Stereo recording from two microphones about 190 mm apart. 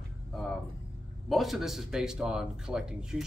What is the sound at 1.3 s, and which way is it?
Speech, centre (ahead or behind).